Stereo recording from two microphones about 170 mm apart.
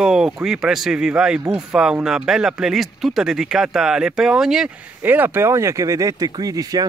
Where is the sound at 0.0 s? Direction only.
5° right (ahead or behind).